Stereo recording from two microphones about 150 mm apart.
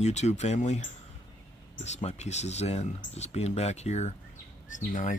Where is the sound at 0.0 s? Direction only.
50° left (ahead or behind).